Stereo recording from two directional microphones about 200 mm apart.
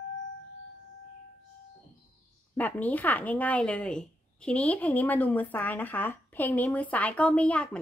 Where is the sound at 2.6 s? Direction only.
10° left (ahead or behind).